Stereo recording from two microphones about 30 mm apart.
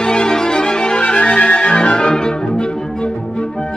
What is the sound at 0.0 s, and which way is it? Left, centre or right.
Music, left.